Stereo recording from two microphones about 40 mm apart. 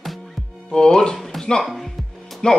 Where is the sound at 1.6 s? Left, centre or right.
Centre.